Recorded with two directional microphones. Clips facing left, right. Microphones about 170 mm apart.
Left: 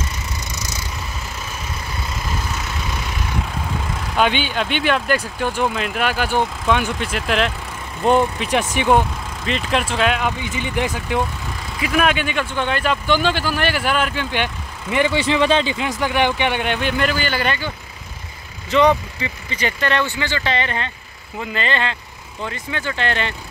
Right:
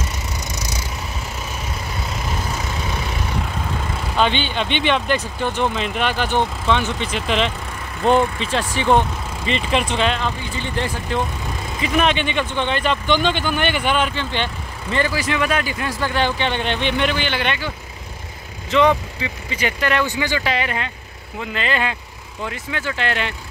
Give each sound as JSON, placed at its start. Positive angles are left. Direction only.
{"t": 4.2, "sound": "speech", "side_deg": 10}
{"t": 8.5, "sound": "speech", "side_deg": 15}
{"t": 9.4, "sound": "speech", "side_deg": 0}
{"t": 15.1, "sound": "speech", "side_deg": 30}